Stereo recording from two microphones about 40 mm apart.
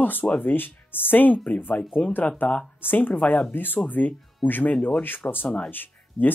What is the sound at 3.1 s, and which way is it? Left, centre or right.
Speech, left.